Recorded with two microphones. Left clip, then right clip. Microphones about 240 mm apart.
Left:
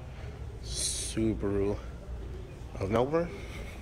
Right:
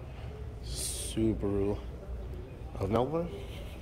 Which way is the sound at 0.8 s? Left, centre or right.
Right.